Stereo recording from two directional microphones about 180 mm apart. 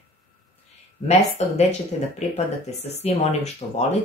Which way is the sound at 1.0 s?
40° left (ahead or behind).